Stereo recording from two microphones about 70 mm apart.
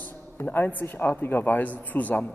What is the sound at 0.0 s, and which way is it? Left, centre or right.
A man's voice, left.